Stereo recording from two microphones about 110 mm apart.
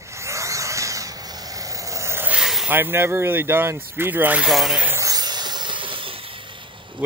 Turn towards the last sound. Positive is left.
turn(degrees=-55)  # may be behind; listen again after turning